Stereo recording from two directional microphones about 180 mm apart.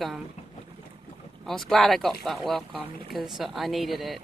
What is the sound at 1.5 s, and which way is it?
Speech, centre (ahead or behind).